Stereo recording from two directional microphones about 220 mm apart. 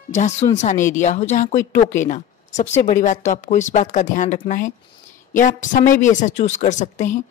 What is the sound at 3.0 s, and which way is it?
Speech, 35° left (ahead or behind).